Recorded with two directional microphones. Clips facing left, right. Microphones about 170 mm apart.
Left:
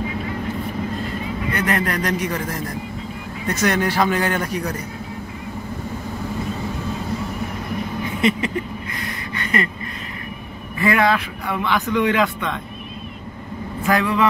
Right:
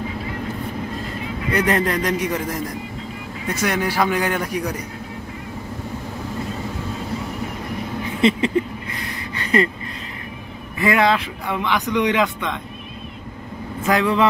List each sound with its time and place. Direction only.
1.5 s speech: 30° right (ahead or behind)
3.4 s a man's voice: 10° right (ahead or behind)
8.2 s a sound: 30° right (ahead or behind)
10.8 s a man's voice: 20° right (ahead or behind)
13.8 s speech: 20° right (ahead or behind)